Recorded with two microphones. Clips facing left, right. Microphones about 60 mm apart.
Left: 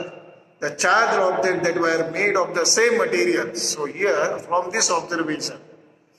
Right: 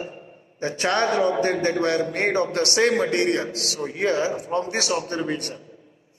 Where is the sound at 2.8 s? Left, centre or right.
Left.